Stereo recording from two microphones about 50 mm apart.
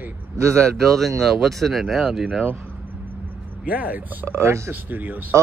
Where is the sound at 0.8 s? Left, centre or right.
Centre.